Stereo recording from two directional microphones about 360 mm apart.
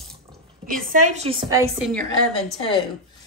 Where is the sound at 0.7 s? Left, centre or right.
Right; by 2.5 s centre.